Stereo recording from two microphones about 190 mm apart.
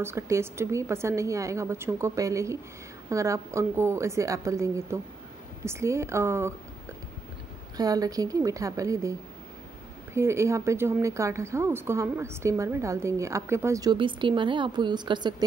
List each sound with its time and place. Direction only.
0.0 s a woman's voice: 15° right (ahead or behind)
7.7 s a woman's voice: 20° right (ahead or behind)
10.1 s a woman's voice: 15° right (ahead or behind)